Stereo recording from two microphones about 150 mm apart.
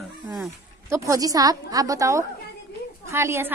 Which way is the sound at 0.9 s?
20° right (ahead or behind).